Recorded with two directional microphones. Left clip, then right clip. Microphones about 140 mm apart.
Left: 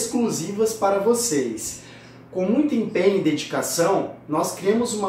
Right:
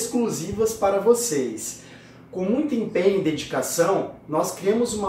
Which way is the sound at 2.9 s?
5° left (ahead or behind).